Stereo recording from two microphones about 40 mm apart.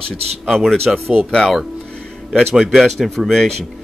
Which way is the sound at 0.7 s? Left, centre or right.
Centre.